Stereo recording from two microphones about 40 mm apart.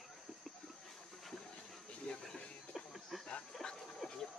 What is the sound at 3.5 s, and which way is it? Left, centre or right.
Speech, centre.